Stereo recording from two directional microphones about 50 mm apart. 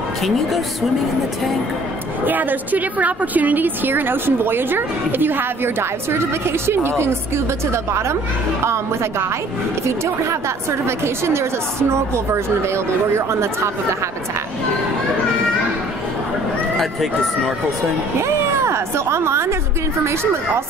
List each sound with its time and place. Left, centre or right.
2.2 s a woman's voice: right
10.9 s speech: right
16.7 s speech: centre
18.2 s a sound: right